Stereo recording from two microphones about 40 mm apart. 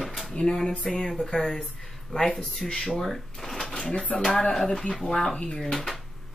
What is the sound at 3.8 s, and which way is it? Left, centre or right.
Speech, left.